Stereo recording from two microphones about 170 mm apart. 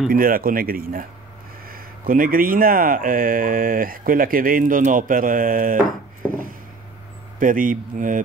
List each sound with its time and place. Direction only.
0.1 s speech: 55° right (ahead or behind)